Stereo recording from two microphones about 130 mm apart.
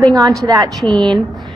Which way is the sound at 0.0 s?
35° right (ahead or behind).